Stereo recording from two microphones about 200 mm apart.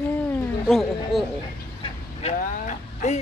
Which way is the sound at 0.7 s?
Centre (ahead or behind).